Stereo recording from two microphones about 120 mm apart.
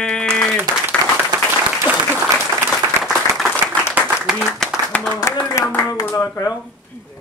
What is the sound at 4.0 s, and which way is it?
Applause, 5° right (ahead or behind).